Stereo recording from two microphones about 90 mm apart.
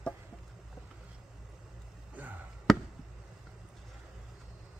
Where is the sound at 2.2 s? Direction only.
15° right (ahead or behind).